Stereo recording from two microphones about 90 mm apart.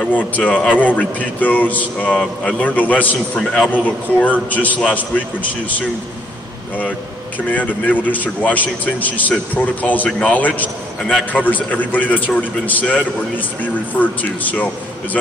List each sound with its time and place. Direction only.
0.0 s a man's voice: 15° left (ahead or behind)
7.5 s a man's voice: 15° left (ahead or behind)